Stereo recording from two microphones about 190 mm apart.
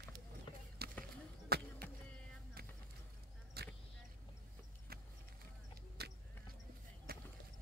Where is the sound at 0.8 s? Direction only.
55° right (ahead or behind).